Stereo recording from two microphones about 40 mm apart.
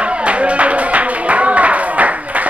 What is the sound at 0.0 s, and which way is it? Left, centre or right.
Clapping, right.